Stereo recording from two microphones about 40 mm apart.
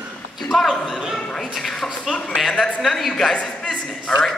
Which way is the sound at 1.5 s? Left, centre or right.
Centre.